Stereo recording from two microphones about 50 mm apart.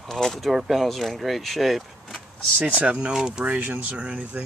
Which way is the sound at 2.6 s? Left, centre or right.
Right.